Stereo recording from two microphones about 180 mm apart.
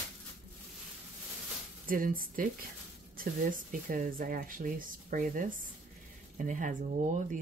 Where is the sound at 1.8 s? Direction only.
50° right (ahead or behind).